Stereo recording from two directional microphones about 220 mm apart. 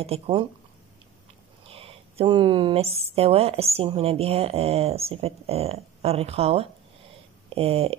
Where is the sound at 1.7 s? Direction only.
25° right (ahead or behind).